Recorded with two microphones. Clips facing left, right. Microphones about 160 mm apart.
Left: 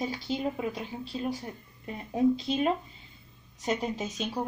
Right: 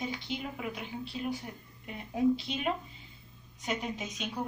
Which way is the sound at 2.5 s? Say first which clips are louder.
Left 6 dB; 35° left (ahead or behind).